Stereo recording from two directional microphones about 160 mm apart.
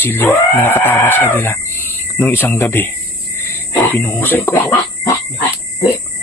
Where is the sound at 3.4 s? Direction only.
10° left (ahead or behind).